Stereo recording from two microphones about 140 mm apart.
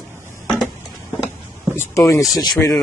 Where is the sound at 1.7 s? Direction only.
20° left (ahead or behind).